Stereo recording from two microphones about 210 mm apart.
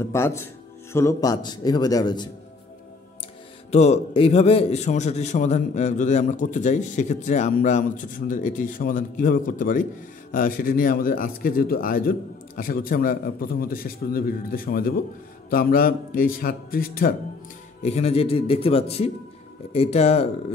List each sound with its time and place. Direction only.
0.0 s a man's voice: 15° left (ahead or behind)
3.7 s a man's voice: 30° left (ahead or behind)
17.8 s a man's voice: 30° left (ahead or behind)